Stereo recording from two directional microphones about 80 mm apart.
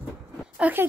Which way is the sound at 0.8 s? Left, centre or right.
Right.